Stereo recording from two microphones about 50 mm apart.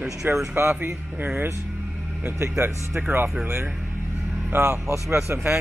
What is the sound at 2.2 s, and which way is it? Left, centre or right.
Speech, right.